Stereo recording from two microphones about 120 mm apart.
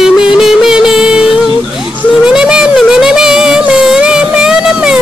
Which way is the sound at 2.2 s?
5° right (ahead or behind).